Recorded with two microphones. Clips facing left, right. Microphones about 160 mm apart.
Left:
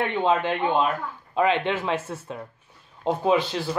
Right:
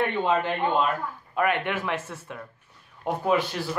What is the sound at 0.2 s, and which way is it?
A man's voice, 20° left (ahead or behind).